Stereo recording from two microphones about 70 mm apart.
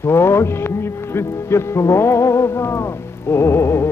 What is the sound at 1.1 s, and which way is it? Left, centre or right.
Music, left.